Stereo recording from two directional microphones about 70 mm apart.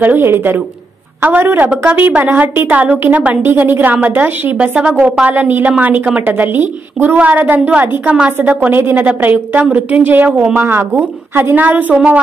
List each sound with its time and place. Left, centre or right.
0.0 s a woman's voice: right